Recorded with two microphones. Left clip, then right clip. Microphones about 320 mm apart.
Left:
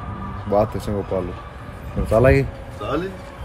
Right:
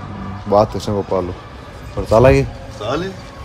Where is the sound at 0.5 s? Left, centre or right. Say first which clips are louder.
Right 5 dB; centre.